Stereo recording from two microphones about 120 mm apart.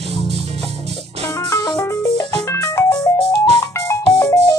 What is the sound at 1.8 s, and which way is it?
Music, 30° left (ahead or behind).